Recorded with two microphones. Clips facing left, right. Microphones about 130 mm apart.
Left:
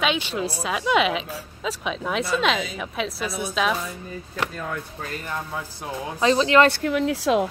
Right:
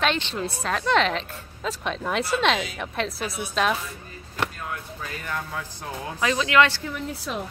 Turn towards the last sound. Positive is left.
turn(degrees=90)